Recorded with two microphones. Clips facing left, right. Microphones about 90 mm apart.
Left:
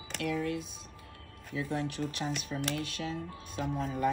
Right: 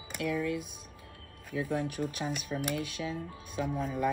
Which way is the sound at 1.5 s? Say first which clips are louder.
Right 2 dB; 50° right (ahead or behind).